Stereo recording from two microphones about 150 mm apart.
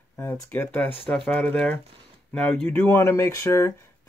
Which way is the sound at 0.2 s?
15° left (ahead or behind).